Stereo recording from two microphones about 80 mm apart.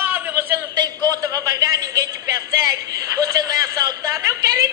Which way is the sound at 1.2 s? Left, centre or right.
Right.